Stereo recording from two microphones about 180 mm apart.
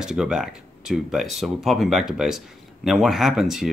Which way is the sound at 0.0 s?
5° right (ahead or behind).